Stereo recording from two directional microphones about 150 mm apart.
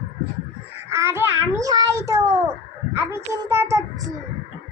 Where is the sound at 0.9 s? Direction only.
20° right (ahead or behind).